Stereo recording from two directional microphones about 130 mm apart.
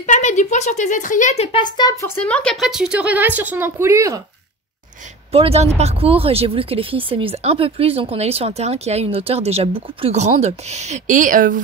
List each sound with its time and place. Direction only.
0.0 s speech: 65° left (ahead or behind)
1.3 s speech: 55° left (ahead or behind)
1.6 s speech: 30° left (ahead or behind)
2.2 s a woman's voice: 10° left (ahead or behind); by 4.2 s 20° right (ahead or behind)
5.3 s speech: 50° right (ahead or behind); by 11.6 s 90° right